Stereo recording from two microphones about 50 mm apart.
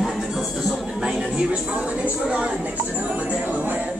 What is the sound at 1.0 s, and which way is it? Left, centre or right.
Speech, centre.